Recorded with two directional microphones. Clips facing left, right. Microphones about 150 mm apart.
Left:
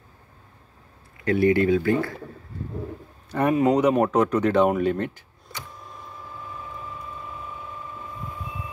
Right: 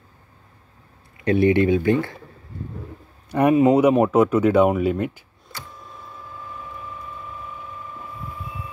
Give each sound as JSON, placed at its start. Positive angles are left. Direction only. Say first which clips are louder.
{"t": 1.2, "sound": "speech", "louder": "right 2 dB", "side_deg": -20}
{"t": 3.3, "sound": "speech", "louder": "right 4 dB", "side_deg": -15}